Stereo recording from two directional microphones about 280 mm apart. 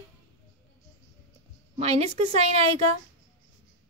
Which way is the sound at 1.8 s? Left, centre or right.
Right.